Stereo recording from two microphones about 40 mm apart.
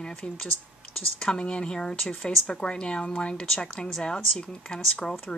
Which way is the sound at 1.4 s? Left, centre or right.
Left.